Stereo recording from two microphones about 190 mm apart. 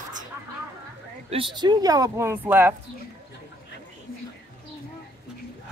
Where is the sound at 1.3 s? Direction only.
25° right (ahead or behind).